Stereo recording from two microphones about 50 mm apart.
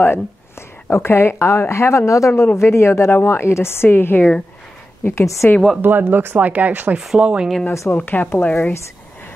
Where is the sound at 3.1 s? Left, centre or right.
Left.